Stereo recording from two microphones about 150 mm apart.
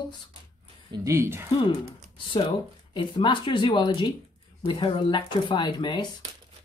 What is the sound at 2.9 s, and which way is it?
Speech, 35° left (ahead or behind).